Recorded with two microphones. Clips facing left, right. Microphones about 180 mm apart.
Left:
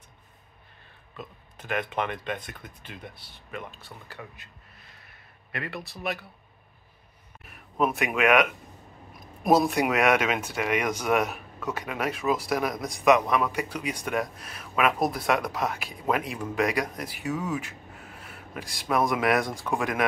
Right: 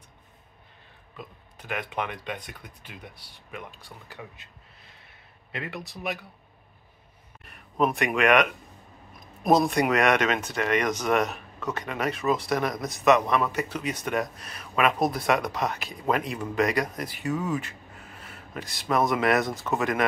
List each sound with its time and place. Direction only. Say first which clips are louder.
1.1 s speech: left 1 dB; 10° right (ahead or behind)
5.5 s speech: even; 20° right (ahead or behind)
7.4 s speech: right 1 dB; 5° left (ahead or behind)